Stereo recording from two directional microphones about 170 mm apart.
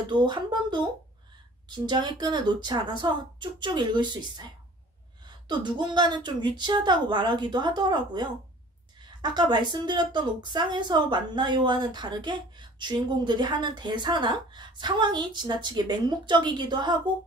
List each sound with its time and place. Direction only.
0.1 s a woman's voice: 25° right (ahead or behind)
5.5 s a woman's voice: 25° right (ahead or behind)